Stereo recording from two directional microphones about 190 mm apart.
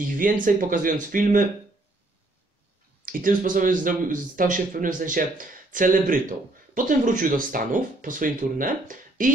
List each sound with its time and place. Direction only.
0.0 s speech: 45° right (ahead or behind)
3.1 s speech: 45° right (ahead or behind)